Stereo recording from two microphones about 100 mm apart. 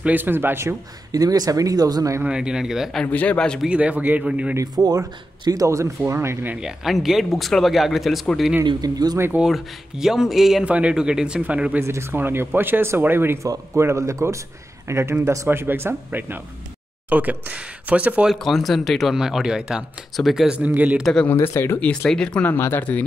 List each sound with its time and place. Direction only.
0.0 s speech: 20° right (ahead or behind)
1.1 s a man's voice: 40° right (ahead or behind)
2.2 s speech: 10° right (ahead or behind)
3.0 s speech: 15° left (ahead or behind)
3.6 s speech: 10° right (ahead or behind)
4.6 s a man's voice: 40° right (ahead or behind)
6.5 s speech: 5° right (ahead or behind)
8.6 s a man's voice: 40° right (ahead or behind)
9.4 s speech: 5° right (ahead or behind)
11.8 s a man's voice: 25° right (ahead or behind)
18.3 s speech: centre (ahead or behind)
21.0 s speech: 5° left (ahead or behind)
21.3 s speech: 25° left (ahead or behind)
21.7 s speech: 15° left (ahead or behind)